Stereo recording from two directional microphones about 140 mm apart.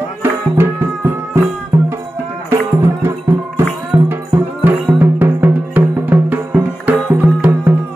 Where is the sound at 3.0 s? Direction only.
15° right (ahead or behind).